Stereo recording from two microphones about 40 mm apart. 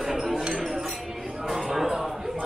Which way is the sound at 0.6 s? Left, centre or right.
Centre.